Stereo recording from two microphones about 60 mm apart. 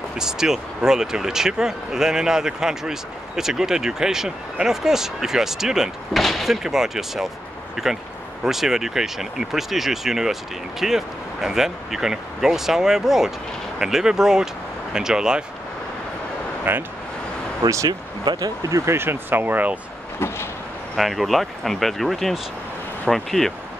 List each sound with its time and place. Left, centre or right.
0.2 s speech: centre
16.7 s speech: right
17.6 s speech: right
18.4 s speech: right
18.9 s speech: right
20.9 s speech: centre